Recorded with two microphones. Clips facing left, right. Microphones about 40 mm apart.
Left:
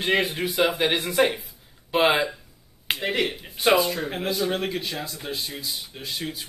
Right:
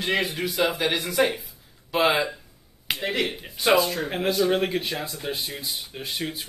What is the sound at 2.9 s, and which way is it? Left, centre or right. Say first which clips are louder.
Speech: left 1 dB; centre.